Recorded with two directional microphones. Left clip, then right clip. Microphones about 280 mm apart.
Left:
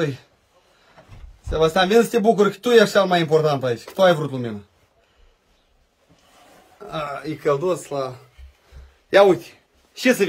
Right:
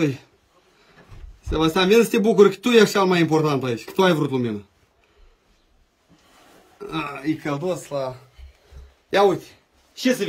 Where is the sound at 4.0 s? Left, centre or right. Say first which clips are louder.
Left 3 dB; left.